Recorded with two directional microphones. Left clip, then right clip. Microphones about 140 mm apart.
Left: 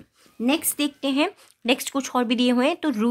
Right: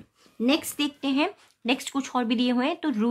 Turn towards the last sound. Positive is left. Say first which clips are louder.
# left 4 dB
turn(degrees=40)  # may be behind; listen again after turning